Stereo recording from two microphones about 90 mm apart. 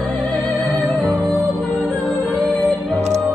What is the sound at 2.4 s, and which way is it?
Music, 15° left (ahead or behind).